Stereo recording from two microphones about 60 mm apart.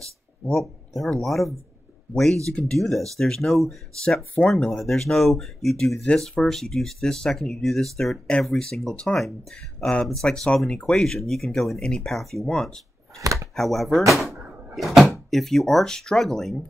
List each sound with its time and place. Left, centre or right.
0.5 s speech: centre
6.0 s speech: centre
13.2 s chopping: right
13.6 s speech: centre
15.0 s speech: centre